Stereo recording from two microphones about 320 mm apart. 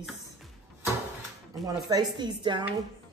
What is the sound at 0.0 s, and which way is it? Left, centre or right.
Music, centre.